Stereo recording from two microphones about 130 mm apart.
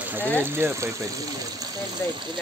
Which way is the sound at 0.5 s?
20° right (ahead or behind).